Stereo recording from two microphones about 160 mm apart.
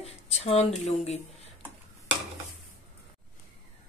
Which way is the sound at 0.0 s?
40° left (ahead or behind).